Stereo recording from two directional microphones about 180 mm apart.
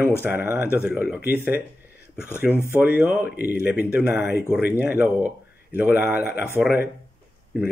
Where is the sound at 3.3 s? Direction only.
60° left (ahead or behind).